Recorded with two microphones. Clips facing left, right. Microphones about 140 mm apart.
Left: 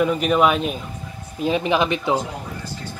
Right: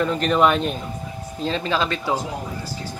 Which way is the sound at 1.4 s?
15° left (ahead or behind).